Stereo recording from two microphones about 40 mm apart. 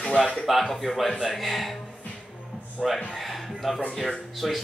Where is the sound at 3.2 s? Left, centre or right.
Centre.